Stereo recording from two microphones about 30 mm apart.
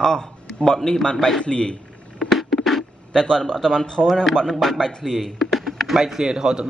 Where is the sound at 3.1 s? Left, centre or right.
Left.